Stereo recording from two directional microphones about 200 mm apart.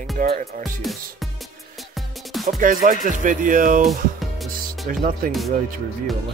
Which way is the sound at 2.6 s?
40° right (ahead or behind).